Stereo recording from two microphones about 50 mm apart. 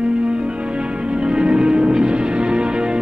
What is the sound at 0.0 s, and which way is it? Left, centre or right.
Music, centre.